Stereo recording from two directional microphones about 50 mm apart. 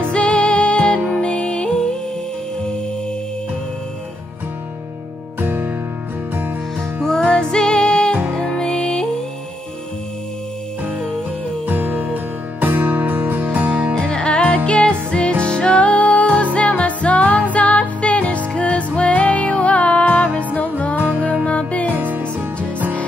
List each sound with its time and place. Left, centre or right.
0.1 s music: left
5.4 s music: right
7.1 s music: centre
10.9 s music: centre
11.6 s music: right
13.9 s music: centre
21.5 s music: left
21.9 s music: right